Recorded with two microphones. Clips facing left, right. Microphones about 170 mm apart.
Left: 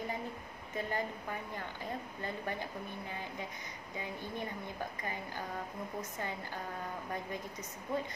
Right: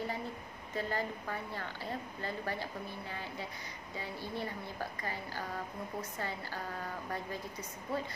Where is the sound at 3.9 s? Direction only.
15° left (ahead or behind).